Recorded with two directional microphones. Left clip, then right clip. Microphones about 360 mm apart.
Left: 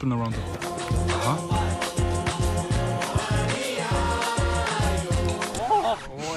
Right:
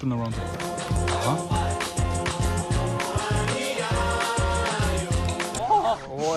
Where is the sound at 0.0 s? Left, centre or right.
Centre.